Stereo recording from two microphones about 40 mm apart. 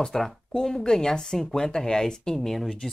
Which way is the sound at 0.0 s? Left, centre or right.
Centre.